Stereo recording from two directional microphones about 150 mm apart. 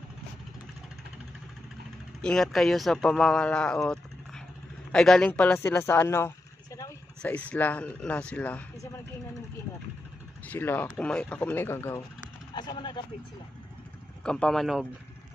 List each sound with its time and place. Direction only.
2.2 s speech: 5° left (ahead or behind)
10.5 s speech: 15° left (ahead or behind)
12.5 s speech: 30° left (ahead or behind)
14.2 s speech: 5° left (ahead or behind)